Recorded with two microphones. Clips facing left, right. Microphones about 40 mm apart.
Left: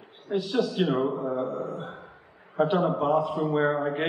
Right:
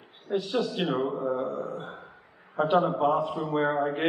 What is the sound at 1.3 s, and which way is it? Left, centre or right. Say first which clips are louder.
Speech: left 1 dB; left.